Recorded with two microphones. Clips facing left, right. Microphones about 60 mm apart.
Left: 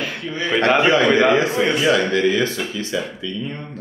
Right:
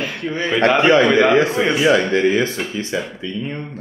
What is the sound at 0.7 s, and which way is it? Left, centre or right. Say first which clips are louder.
Speech: right 3 dB; right.